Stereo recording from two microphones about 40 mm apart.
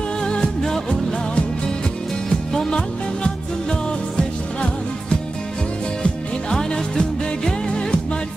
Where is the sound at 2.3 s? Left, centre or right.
Centre.